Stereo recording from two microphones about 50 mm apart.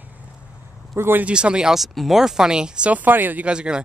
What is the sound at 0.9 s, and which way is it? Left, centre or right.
Speech, right.